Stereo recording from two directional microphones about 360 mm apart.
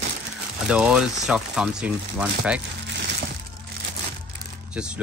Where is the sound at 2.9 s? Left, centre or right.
Right.